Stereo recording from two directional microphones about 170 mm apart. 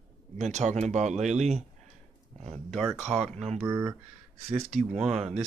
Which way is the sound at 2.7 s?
Centre (ahead or behind).